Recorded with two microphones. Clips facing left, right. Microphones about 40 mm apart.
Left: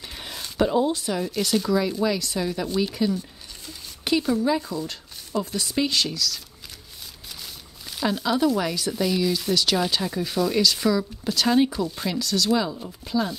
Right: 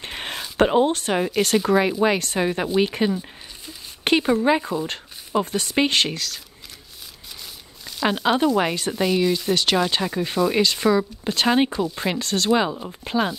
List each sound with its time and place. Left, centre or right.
0.0 s a sound: right
0.6 s speech: right
8.1 s speech: right
8.9 s speech: centre
9.5 s speech: right